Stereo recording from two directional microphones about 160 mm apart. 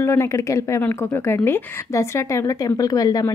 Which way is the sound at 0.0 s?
15° left (ahead or behind).